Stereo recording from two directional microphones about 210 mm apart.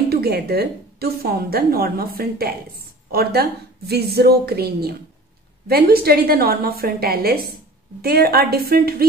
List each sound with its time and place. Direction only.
0.1 s a woman's voice: 50° right (ahead or behind)